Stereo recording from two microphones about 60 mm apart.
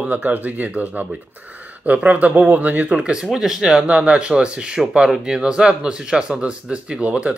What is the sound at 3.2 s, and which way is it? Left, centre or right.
Speech, centre.